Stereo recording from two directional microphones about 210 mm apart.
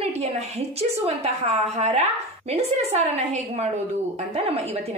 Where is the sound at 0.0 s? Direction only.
30° right (ahead or behind).